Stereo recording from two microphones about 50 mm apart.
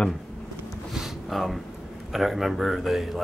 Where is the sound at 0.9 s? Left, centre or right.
Centre.